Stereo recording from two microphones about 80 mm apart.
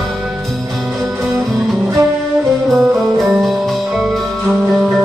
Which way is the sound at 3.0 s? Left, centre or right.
Centre.